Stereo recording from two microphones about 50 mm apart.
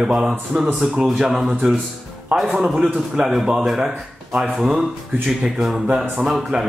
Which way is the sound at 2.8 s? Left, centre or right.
Centre.